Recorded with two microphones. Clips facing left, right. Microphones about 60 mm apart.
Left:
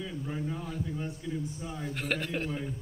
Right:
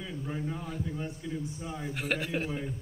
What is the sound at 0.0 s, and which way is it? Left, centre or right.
A man's voice, centre.